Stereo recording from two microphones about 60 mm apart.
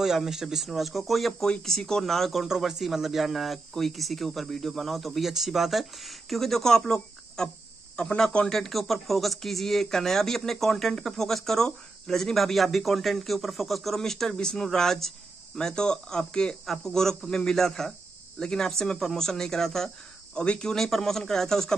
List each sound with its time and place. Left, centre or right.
0.0 s speech: centre
2.4 s speech: centre
8.5 s speech: centre